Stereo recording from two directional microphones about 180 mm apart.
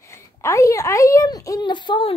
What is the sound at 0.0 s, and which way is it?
A woman's voice, 15° left (ahead or behind).